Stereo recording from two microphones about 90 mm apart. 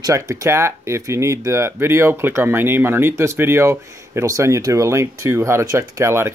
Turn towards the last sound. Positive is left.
turn(degrees=-30)  # may be behind; listen again after turning